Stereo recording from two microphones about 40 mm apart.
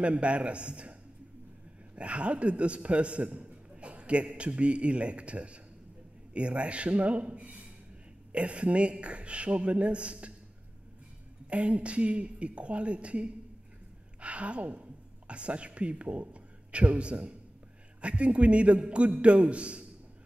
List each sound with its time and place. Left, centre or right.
0.0 s a man's voice: right
2.0 s a man's voice: right
11.4 s a man's voice: right